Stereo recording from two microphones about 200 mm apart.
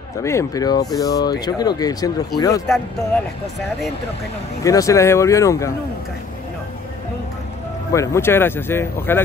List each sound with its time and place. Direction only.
0.2 s speech: 15° left (ahead or behind)
4.6 s speech: 15° left (ahead or behind)
7.9 s speech: 15° left (ahead or behind)